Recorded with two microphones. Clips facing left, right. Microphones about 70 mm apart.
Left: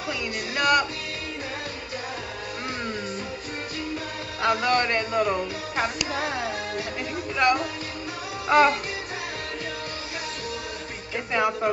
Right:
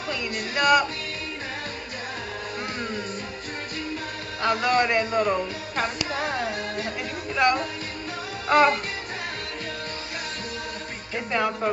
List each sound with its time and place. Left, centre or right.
0.1 s a sound: centre
4.4 s speech: centre
7.3 s speech: centre
11.3 s speech: centre